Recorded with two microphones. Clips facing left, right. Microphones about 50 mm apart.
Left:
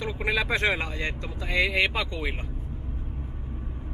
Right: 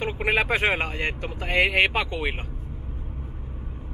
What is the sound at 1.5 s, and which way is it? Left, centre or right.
Speech, right.